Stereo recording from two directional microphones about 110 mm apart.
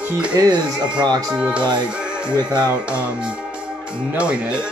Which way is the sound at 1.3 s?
10° right (ahead or behind).